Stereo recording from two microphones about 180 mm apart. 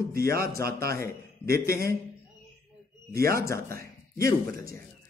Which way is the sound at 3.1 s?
55° right (ahead or behind).